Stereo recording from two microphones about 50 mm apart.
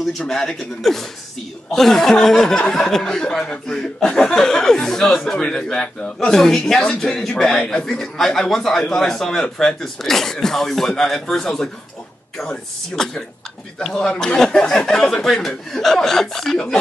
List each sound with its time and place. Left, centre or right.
0.3 s speech: centre